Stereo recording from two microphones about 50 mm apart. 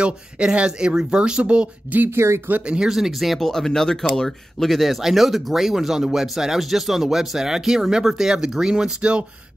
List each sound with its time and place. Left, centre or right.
0.0 s speech: centre
2.0 s speech: right
2.6 s speech: centre
2.9 s speech: centre
3.3 s speech: centre